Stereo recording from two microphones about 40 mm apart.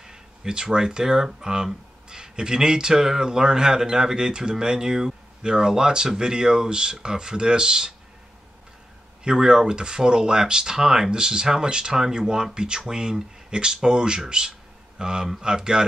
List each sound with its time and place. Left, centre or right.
0.0 s speech: centre
9.2 s speech: centre